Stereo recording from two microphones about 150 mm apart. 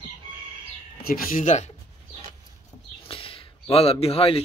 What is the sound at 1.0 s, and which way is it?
Speech, 75° left (ahead or behind).